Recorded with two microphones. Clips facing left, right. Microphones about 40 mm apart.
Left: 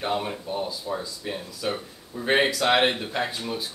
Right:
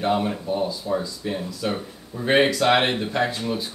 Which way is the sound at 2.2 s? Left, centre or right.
Centre.